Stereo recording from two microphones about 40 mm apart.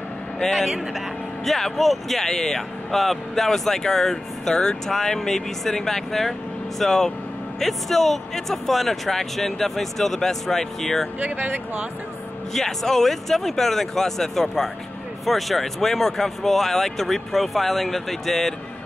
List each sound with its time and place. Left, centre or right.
0.4 s speech: centre
11.1 s speech: right
12.5 s speech: centre